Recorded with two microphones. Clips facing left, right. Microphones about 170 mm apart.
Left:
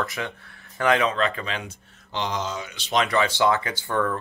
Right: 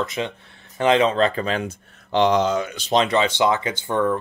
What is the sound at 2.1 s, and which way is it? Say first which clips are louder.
Speech: right 11 dB; 60° right (ahead or behind).